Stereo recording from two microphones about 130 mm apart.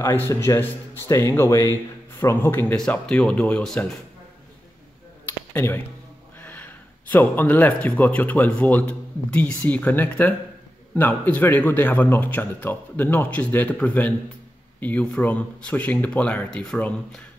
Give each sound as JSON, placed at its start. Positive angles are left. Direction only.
{"t": 0.0, "sound": "a man's voice", "side_deg": 20}
{"t": 5.5, "sound": "a man's voice", "side_deg": 20}